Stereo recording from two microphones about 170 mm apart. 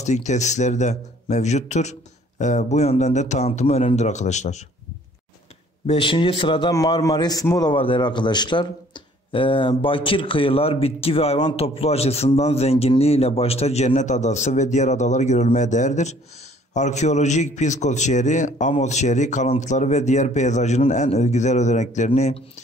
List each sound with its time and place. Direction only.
0.0 s a man's voice: 45° left (ahead or behind)
5.9 s a man's voice: 30° left (ahead or behind)
7.7 s a man's voice: 30° left (ahead or behind)